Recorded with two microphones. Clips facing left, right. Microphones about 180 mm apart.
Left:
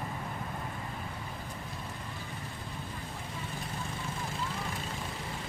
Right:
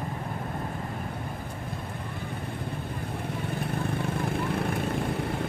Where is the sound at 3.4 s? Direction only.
60° right (ahead or behind).